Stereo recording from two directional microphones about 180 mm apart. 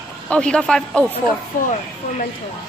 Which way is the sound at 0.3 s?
5° left (ahead or behind).